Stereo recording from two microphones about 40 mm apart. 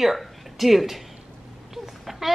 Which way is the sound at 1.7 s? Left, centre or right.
Centre.